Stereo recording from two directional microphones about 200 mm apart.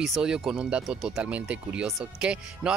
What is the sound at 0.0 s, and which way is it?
Speech, centre (ahead or behind).